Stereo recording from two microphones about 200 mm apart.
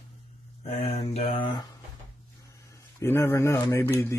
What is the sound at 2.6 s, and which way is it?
Speech, 15° left (ahead or behind).